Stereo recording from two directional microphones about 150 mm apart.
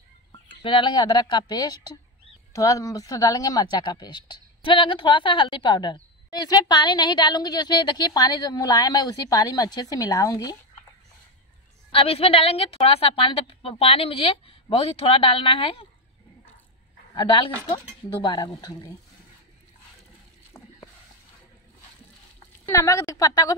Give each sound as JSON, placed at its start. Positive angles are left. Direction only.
{"t": 0.3, "sound": "a woman's voice", "side_deg": 30}
{"t": 11.9, "sound": "a woman's voice", "side_deg": 40}
{"t": 17.1, "sound": "a woman's voice", "side_deg": 30}
{"t": 22.7, "sound": "a woman's voice", "side_deg": 20}